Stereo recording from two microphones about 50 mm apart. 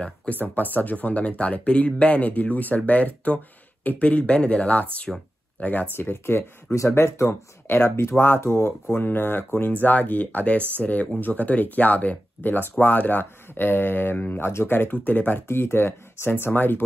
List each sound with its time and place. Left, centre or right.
0.3 s speech: left
5.9 s speech: left
6.9 s speech: left
8.9 s speech: left
9.7 s speech: left
14.5 s speech: left
15.0 s speech: left
15.4 s speech: left